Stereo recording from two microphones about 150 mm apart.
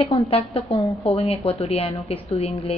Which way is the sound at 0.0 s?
40° left (ahead or behind).